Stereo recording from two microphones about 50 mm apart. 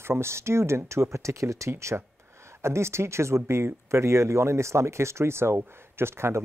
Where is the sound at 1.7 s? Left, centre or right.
Right.